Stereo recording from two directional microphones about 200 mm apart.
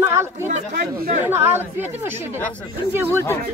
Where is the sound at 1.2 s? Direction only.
10° right (ahead or behind).